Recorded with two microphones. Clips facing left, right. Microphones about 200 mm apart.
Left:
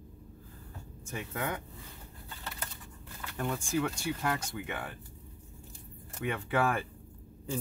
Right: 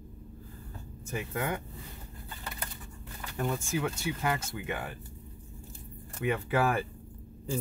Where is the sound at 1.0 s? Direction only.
10° right (ahead or behind).